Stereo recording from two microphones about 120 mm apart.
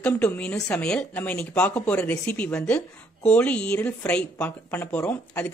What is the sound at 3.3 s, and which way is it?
A man's voice, 10° left (ahead or behind).